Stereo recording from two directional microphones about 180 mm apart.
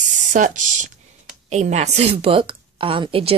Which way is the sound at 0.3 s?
45° right (ahead or behind).